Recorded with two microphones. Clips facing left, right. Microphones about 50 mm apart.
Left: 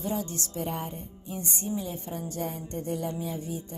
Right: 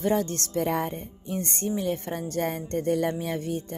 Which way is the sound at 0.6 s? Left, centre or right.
Right.